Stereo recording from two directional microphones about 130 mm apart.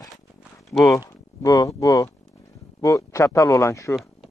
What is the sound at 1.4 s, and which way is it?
A man's voice, 25° left (ahead or behind).